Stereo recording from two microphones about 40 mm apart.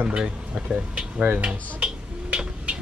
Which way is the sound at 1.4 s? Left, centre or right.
Right.